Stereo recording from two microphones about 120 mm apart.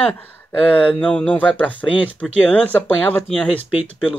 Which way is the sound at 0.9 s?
10° left (ahead or behind).